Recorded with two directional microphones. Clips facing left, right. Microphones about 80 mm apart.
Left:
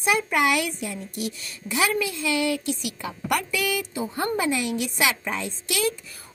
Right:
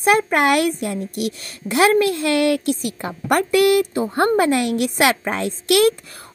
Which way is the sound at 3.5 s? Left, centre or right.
Right.